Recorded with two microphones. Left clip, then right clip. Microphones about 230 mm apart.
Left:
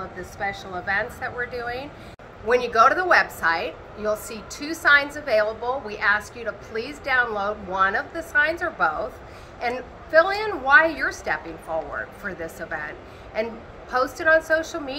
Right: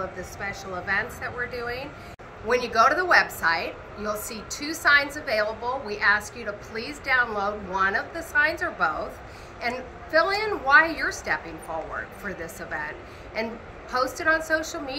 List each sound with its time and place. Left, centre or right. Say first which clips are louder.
0.4 s a woman's voice: left 4 dB; centre